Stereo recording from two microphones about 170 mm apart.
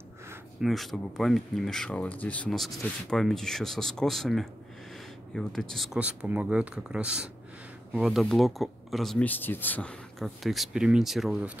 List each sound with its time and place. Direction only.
0.6 s speech: centre (ahead or behind)